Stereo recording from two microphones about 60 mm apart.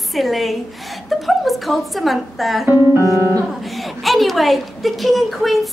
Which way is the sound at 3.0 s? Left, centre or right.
Left.